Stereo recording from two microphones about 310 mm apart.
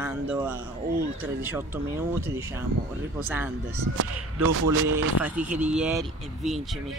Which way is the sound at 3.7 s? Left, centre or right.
Right.